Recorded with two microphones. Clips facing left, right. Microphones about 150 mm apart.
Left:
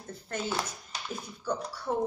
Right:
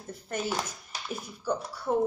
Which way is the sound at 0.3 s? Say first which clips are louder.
Right 1 dB; 10° right (ahead or behind).